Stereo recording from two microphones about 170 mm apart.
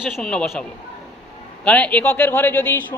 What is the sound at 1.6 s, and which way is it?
A man's voice, 5° left (ahead or behind).